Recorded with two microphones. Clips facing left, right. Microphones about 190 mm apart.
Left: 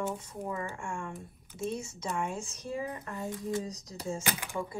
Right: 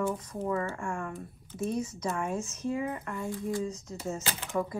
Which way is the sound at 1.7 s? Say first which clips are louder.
Right 4 dB; 30° left (ahead or behind).